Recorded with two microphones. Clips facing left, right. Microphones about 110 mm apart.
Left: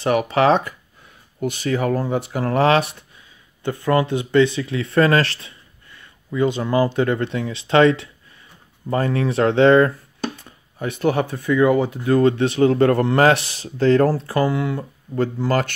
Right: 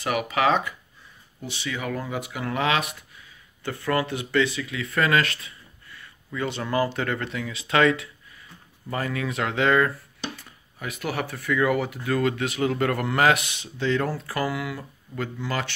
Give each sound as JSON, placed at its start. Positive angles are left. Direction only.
{"t": 0.0, "sound": "speech", "side_deg": 35}
{"t": 1.4, "sound": "speech", "side_deg": 45}